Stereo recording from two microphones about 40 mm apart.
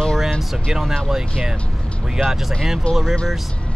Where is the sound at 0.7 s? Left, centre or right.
Centre.